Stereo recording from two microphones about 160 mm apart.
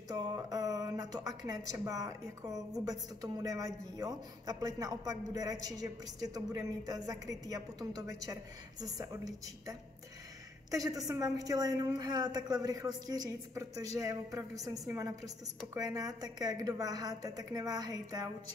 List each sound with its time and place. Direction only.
0.1 s speech: 25° right (ahead or behind)